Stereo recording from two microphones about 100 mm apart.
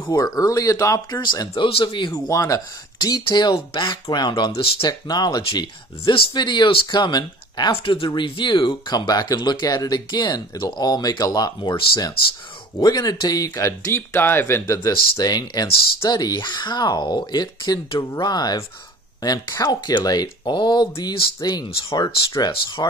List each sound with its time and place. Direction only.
0.1 s speech: 40° left (ahead or behind)
1.2 s speech: 50° left (ahead or behind)
1.6 s speech: 60° left (ahead or behind)
2.1 s speech: 35° left (ahead or behind)
4.5 s speech: 70° left (ahead or behind)
4.8 s speech: 40° left (ahead or behind)
6.0 s speech: 55° left (ahead or behind)
7.0 s speech: 45° left (ahead or behind)
7.8 s speech: 60° left (ahead or behind); by 11.7 s 40° left (ahead or behind)
12.8 s speech: 40° left (ahead or behind)